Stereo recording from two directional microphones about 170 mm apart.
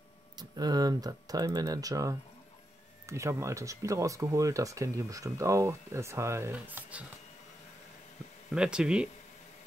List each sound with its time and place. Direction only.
0.4 s speech: 25° right (ahead or behind)
8.5 s speech: 5° right (ahead or behind)